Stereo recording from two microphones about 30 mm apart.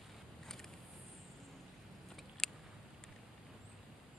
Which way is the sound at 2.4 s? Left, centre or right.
Centre.